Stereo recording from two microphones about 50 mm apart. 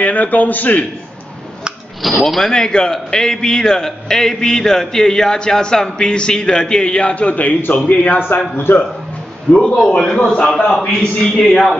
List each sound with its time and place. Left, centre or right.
0.0 s a man's voice: left
2.0 s speech: centre
2.5 s a man's voice: centre; by 8.8 s left
9.8 s a man's voice: centre